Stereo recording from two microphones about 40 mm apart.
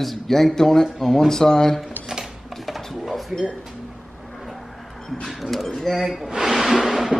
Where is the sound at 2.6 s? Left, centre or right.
Centre.